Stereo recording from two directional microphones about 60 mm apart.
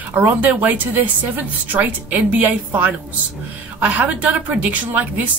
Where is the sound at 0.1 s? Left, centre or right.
Right.